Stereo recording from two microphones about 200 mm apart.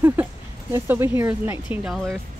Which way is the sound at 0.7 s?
10° right (ahead or behind).